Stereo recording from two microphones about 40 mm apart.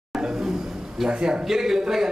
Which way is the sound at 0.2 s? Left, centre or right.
Centre.